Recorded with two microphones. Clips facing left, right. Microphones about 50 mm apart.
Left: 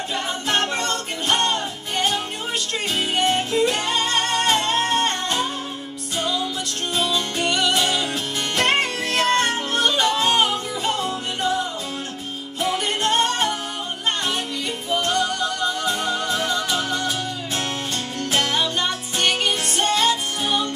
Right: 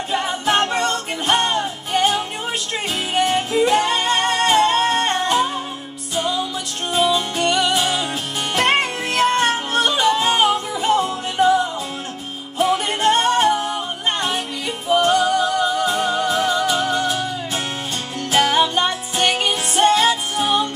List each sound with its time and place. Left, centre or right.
0.1 s music: centre
3.3 s music: centre
6.9 s music: centre
12.5 s music: centre
14.9 s music: centre
18.3 s music: centre